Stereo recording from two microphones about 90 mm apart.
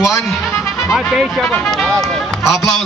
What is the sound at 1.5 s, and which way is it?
Music, 5° left (ahead or behind).